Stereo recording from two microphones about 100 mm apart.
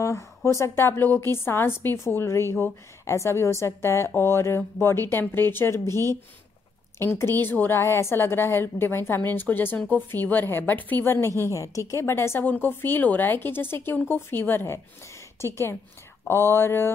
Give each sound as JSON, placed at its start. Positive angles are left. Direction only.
{"t": 0.0, "sound": "a woman's voice", "side_deg": 30}